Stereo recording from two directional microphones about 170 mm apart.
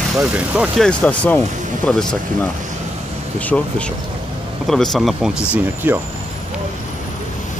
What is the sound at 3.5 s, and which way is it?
Speech, 5° left (ahead or behind).